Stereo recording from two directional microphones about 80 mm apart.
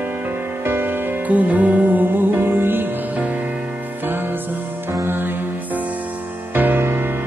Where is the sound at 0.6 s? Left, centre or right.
Right.